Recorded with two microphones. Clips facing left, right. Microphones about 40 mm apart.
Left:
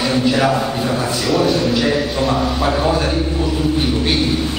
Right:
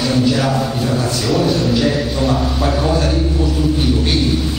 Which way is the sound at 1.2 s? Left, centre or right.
Centre.